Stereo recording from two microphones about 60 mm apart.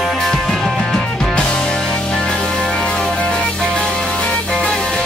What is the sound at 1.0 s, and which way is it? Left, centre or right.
Music, centre.